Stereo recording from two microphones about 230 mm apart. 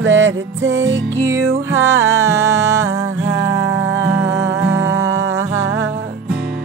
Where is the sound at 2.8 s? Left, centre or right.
Right.